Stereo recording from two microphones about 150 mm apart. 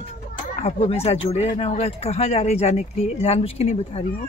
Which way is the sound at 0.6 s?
40° left (ahead or behind).